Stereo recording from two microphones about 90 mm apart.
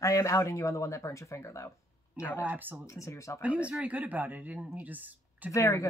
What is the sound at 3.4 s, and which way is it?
Speech, 15° right (ahead or behind).